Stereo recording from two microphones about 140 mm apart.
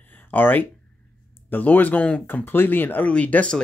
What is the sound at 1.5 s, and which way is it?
Speech, 15° left (ahead or behind).